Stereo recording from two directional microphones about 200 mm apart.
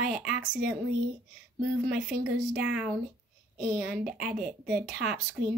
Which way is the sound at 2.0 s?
5° right (ahead or behind).